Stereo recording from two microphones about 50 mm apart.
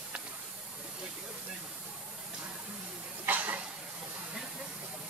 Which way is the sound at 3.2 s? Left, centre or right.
Right.